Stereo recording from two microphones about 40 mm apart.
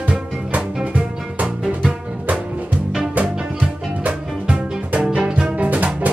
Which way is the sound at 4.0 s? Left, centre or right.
Right.